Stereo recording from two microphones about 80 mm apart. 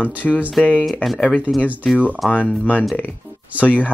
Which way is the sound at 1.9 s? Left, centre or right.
Centre.